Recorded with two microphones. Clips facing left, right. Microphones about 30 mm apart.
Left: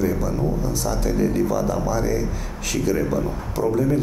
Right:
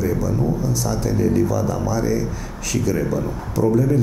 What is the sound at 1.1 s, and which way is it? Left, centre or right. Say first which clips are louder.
Speech: right 2 dB; left.